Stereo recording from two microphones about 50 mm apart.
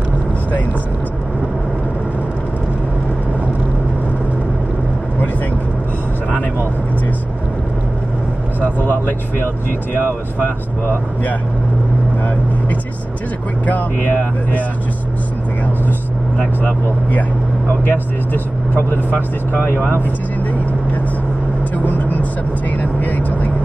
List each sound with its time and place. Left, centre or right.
8.7 s speech: left
13.7 s speech: left
16.3 s speech: left
19.5 s speech: left
21.7 s speech: left